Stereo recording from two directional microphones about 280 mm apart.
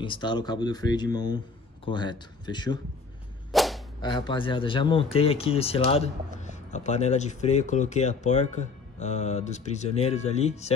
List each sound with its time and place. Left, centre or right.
0.0 s speech: centre
3.5 s whip: centre
4.0 s speech: centre